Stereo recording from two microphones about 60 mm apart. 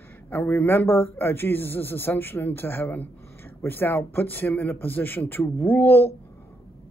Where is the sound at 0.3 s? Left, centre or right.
Left.